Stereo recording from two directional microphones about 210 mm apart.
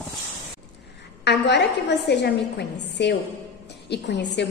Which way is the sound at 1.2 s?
55° left (ahead or behind).